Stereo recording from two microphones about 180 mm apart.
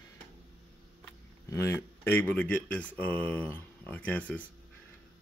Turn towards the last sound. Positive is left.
turn(degrees=10)  # may be behind; listen again after turning